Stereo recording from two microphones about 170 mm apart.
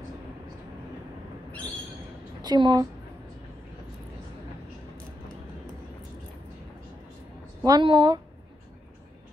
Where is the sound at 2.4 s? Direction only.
25° right (ahead or behind).